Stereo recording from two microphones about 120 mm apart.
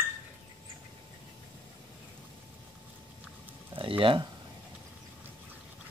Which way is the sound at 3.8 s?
50° right (ahead or behind).